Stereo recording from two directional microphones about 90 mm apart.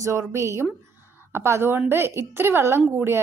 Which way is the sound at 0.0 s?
30° right (ahead or behind).